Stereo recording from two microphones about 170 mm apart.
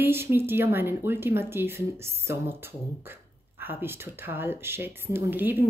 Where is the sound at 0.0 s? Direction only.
15° right (ahead or behind).